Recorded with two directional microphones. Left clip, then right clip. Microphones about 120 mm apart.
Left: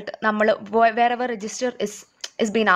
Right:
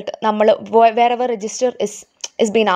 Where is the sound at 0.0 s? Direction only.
30° right (ahead or behind).